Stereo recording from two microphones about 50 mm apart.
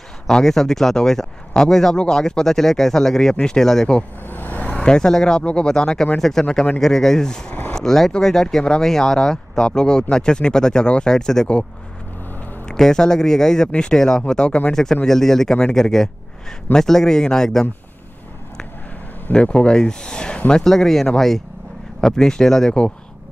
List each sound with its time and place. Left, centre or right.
0.3 s speech: centre
4.3 s vehicle: left
4.8 s speech: centre
12.6 s speech: centre
14.7 s speech: centre
19.3 s speech: centre
20.6 s speech: centre